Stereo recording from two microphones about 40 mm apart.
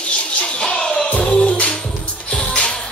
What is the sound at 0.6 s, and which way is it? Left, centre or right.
Music, centre.